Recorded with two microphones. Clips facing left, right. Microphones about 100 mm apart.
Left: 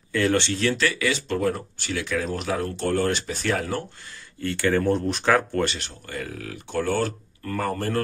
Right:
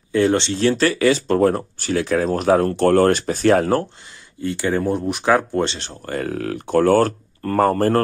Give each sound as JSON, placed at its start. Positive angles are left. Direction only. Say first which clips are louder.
{"t": 0.1, "sound": "speech", "louder": "right 5 dB", "side_deg": -25}
{"t": 4.4, "sound": "speech", "louder": "right 2 dB", "side_deg": -20}
{"t": 6.0, "sound": "speech", "louder": "right 11 dB", "side_deg": -50}